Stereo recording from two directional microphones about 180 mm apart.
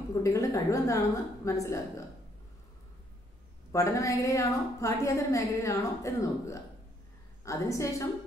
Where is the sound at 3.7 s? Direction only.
20° left (ahead or behind).